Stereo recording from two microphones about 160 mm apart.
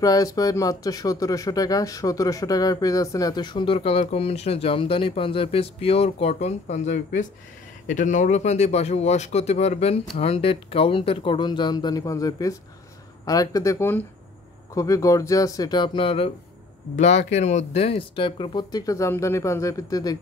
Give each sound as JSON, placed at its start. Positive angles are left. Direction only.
{"t": 0.0, "sound": "speech", "side_deg": 20}
{"t": 16.9, "sound": "speech", "side_deg": 45}